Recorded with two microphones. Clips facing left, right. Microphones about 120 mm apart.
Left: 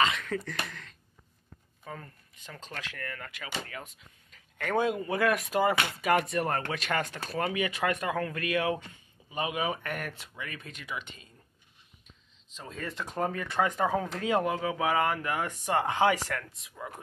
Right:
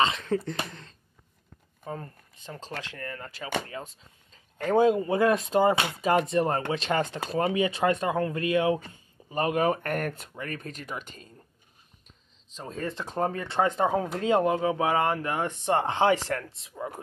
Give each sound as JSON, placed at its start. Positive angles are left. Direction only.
{"t": 0.0, "sound": "speech", "side_deg": -30}
{"t": 8.7, "sound": "speech", "side_deg": -40}
{"t": 12.5, "sound": "speech", "side_deg": -35}